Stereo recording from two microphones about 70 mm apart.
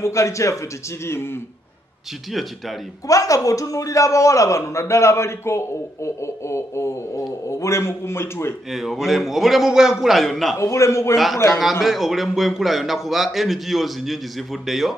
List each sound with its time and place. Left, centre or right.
0.0 s a man's voice: left
3.1 s a man's voice: left
8.7 s a man's voice: centre
10.6 s a man's voice: left
11.8 s a man's voice: centre